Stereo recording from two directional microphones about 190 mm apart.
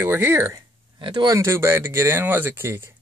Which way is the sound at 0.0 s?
10° right (ahead or behind).